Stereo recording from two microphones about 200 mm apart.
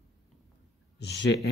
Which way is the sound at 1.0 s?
55° left (ahead or behind).